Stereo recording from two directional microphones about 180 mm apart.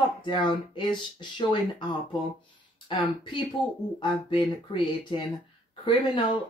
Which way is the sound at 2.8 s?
25° left (ahead or behind).